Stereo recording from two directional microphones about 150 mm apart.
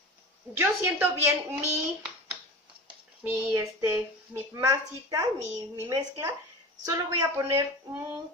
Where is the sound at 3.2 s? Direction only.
20° right (ahead or behind).